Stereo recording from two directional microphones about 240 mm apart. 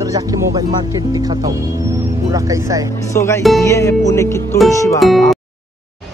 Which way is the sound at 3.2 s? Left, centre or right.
Centre.